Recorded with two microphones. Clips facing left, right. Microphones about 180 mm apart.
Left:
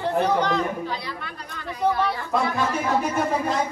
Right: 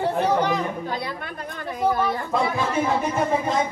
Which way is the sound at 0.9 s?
50° right (ahead or behind).